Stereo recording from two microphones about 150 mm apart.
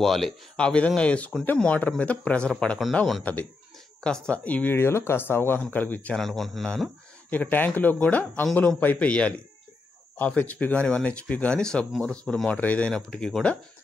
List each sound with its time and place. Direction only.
0.0 s speech: centre (ahead or behind)